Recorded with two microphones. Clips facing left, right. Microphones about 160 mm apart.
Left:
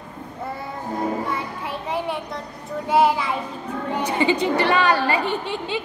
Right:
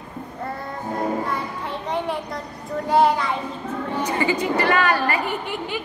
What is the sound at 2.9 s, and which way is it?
Speech, 5° left (ahead or behind).